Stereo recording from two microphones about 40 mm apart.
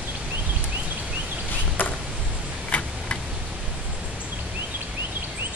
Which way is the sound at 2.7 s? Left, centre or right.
Left.